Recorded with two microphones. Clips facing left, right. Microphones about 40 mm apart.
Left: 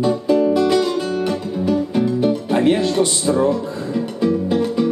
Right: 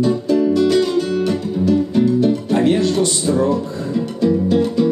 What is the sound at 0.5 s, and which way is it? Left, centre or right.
Music, left.